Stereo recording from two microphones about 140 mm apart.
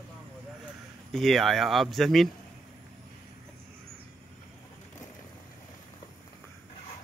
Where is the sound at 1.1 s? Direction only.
Centre (ahead or behind).